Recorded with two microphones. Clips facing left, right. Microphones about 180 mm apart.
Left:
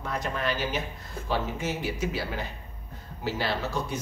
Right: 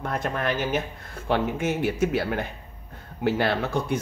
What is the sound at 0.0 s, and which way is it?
Speech, 55° right (ahead or behind).